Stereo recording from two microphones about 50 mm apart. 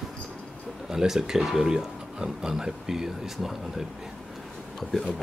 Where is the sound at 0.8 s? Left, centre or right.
Centre.